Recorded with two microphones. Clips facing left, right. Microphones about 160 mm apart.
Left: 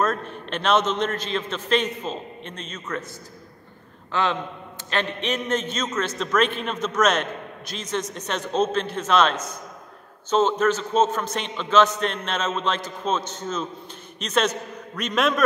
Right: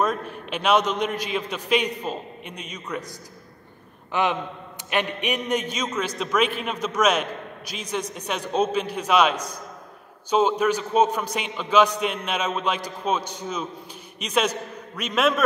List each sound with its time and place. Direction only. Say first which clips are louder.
0.0 s a man's voice: even; 10° right (ahead or behind)
4.1 s a man's voice: right 1 dB; 15° right (ahead or behind)